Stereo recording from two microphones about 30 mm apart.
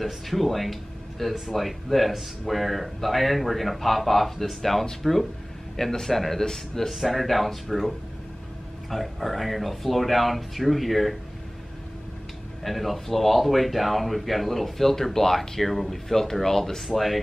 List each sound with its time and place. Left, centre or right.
0.0 s speech: centre
6.9 s speech: centre
8.9 s speech: centre
12.6 s speech: centre
16.8 s speech: centre